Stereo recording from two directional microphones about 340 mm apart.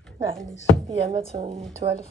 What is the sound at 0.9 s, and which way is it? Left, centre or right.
Speech, centre.